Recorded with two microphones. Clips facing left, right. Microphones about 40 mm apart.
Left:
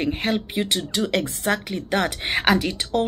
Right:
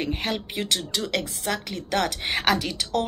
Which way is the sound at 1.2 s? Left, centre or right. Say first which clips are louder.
Left 5 dB; left.